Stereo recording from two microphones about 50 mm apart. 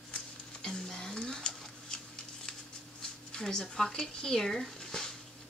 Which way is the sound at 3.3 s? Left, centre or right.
Centre.